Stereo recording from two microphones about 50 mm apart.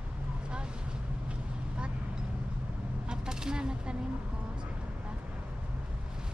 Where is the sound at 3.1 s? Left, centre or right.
Centre.